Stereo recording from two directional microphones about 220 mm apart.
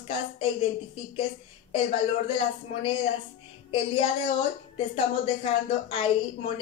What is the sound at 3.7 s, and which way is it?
Speech, 20° left (ahead or behind).